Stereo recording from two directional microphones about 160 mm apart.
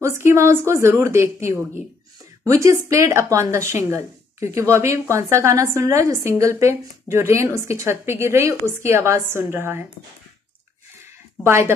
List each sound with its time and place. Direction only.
0.0 s a woman's voice: 15° right (ahead or behind)
11.4 s a woman's voice: 15° right (ahead or behind)